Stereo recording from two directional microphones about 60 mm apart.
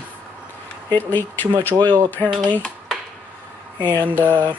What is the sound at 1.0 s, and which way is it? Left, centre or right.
Speech, left.